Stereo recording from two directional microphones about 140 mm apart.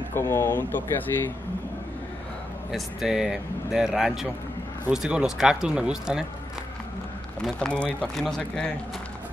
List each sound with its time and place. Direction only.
0.1 s speech: 20° left (ahead or behind)
2.7 s speech: 5° right (ahead or behind)
7.3 s speech: 5° left (ahead or behind)